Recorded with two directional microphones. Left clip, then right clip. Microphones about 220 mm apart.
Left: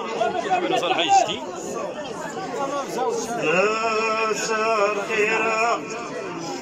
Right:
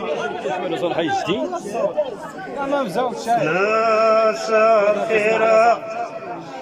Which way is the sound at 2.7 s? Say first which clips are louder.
Right 6 dB; 50° right (ahead or behind).